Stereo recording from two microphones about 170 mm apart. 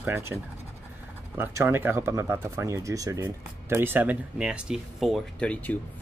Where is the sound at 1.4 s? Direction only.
15° right (ahead or behind).